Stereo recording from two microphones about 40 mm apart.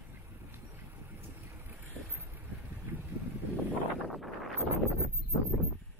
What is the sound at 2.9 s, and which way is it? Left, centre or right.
Boat, right.